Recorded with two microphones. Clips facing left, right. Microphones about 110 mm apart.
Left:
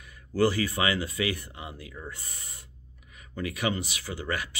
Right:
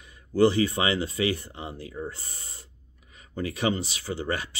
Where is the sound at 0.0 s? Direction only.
25° right (ahead or behind).